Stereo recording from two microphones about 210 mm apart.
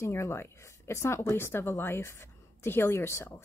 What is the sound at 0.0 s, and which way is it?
Speech, 10° left (ahead or behind).